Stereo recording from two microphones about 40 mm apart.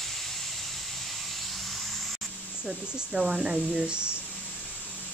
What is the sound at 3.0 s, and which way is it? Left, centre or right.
Speech, centre.